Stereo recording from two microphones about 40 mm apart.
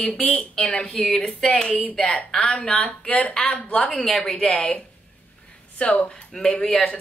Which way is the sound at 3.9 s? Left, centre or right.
Centre.